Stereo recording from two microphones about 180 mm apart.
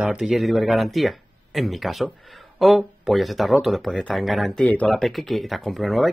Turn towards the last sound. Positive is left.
turn(degrees=0)  # may be behind; listen again after turning